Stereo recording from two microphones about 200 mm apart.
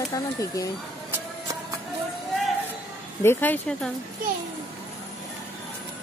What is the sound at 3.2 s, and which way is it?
Speech, 10° left (ahead or behind).